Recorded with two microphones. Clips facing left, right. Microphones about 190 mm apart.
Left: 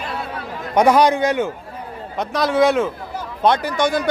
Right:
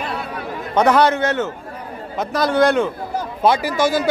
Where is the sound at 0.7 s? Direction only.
10° left (ahead or behind).